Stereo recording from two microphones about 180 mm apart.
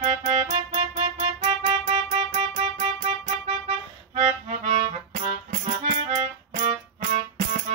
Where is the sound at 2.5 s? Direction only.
40° right (ahead or behind).